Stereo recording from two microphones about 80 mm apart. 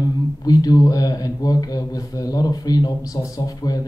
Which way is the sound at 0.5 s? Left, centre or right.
Left.